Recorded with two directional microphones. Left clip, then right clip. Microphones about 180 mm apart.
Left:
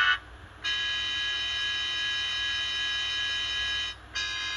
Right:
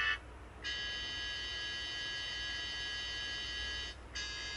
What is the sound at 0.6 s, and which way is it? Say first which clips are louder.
Buzzer: left 11 dB; 45° left (ahead or behind).